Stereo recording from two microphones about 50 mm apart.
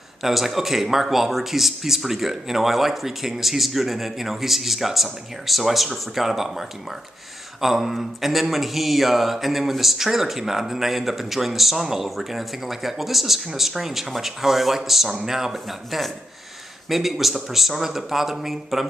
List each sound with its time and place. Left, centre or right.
0.2 s speech: centre
7.6 s speech: centre